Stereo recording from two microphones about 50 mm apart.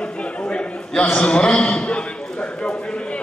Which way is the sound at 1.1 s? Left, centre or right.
Left.